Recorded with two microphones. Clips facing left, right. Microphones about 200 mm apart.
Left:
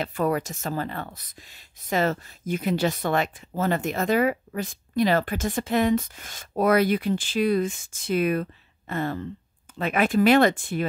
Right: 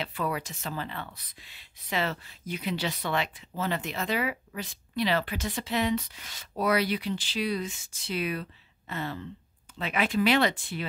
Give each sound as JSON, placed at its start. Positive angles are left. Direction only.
{"t": 0.0, "sound": "speech", "side_deg": 45}